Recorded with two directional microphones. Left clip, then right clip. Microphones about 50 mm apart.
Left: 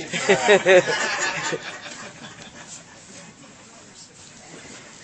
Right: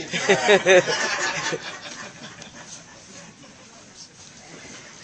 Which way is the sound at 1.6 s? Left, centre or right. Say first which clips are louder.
Even; centre.